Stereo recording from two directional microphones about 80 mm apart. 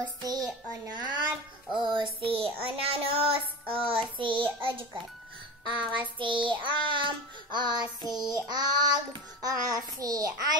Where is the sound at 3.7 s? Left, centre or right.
Right.